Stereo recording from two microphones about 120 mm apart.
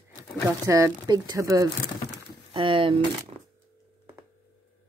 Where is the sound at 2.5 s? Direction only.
45° right (ahead or behind).